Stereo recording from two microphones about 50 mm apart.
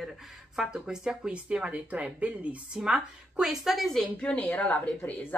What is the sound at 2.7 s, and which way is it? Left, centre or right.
Speech, centre.